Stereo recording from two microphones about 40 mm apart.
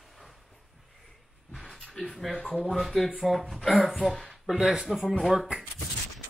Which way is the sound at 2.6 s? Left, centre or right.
Centre.